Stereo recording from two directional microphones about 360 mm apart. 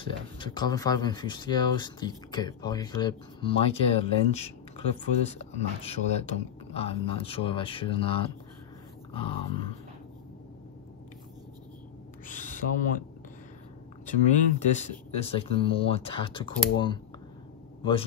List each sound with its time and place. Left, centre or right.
0.0 s speech: centre
12.3 s owl: left
14.0 s speech: centre